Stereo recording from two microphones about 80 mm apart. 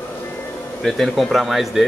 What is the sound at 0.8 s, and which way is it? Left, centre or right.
Speech, centre.